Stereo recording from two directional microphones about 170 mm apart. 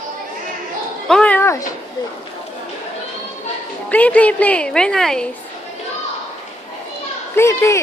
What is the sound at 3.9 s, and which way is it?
A woman's voice, 10° left (ahead or behind).